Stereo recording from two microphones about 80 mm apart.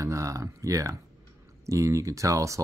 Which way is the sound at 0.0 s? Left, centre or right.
Right.